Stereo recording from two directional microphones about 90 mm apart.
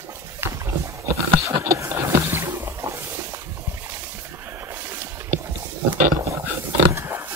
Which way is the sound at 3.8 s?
30° right (ahead or behind).